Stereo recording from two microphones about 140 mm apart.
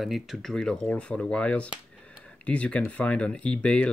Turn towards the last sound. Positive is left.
turn(degrees=10)  # may be behind; listen again after turning